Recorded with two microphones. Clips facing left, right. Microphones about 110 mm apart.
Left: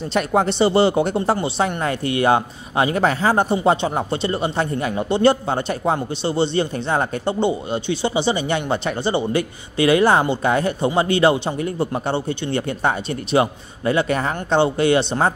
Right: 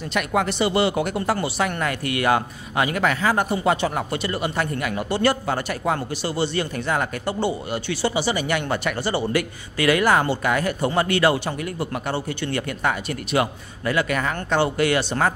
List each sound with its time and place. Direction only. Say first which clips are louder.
0.1 s speech: left 4 dB; 30° left (ahead or behind)